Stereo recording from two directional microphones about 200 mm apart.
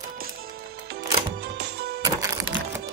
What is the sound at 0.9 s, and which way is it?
Music, 55° right (ahead or behind).